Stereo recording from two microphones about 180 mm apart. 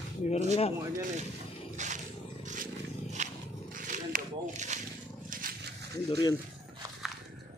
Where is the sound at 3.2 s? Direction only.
40° right (ahead or behind).